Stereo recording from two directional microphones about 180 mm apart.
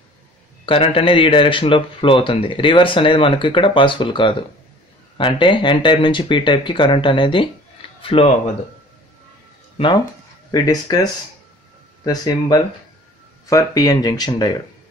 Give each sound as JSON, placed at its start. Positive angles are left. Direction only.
{"t": 0.7, "sound": "speech", "side_deg": 30}
{"t": 9.8, "sound": "speech", "side_deg": 25}
{"t": 12.0, "sound": "speech", "side_deg": 20}